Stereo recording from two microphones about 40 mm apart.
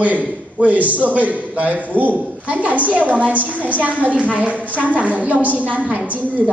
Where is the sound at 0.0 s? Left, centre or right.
Right.